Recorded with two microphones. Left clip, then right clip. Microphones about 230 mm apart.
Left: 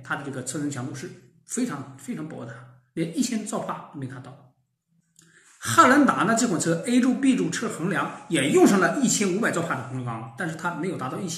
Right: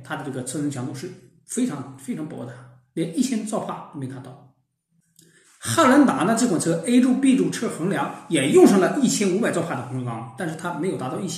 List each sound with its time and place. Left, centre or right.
0.0 s speech: centre
5.6 s speech: centre